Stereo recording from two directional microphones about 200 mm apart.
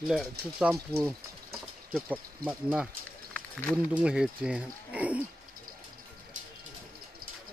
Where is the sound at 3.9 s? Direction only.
5° right (ahead or behind).